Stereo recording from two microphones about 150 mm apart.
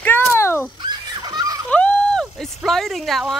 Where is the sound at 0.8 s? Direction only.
30° right (ahead or behind).